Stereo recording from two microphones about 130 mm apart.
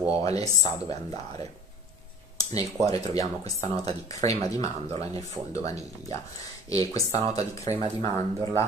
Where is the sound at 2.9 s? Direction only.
25° left (ahead or behind).